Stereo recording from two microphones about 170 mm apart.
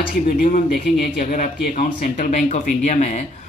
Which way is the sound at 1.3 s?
55° left (ahead or behind).